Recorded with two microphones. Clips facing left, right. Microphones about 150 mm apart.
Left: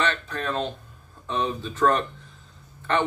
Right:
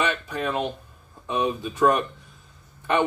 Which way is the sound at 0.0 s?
10° right (ahead or behind).